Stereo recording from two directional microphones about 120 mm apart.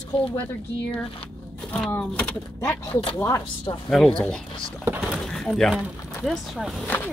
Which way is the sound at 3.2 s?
20° left (ahead or behind).